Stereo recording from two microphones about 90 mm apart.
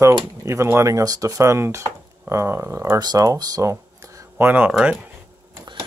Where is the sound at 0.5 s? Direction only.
30° right (ahead or behind).